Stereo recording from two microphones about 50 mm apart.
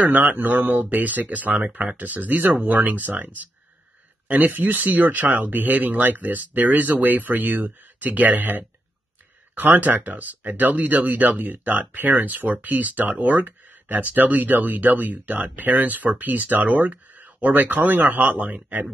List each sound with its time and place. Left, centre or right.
0.0 s speech: right